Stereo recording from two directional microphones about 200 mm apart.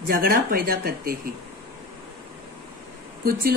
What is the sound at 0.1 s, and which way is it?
Speech, 45° right (ahead or behind).